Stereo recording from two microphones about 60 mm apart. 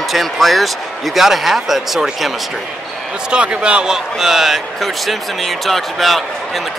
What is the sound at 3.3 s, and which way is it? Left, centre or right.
Speech, centre.